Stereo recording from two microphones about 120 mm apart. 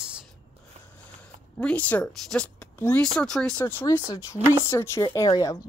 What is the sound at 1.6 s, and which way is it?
Speech, 10° left (ahead or behind).